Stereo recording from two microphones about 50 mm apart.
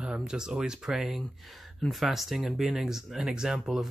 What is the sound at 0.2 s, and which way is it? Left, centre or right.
Speech, centre.